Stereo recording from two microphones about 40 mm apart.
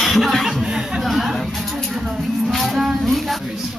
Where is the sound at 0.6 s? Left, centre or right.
Centre.